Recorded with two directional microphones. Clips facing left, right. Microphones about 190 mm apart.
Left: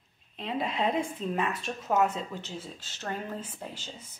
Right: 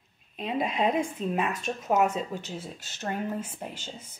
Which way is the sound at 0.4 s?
15° right (ahead or behind).